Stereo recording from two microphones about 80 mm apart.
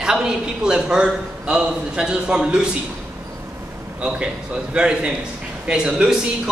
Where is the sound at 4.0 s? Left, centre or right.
Centre.